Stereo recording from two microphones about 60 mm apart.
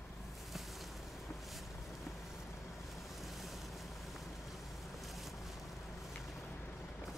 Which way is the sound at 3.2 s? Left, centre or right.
Centre.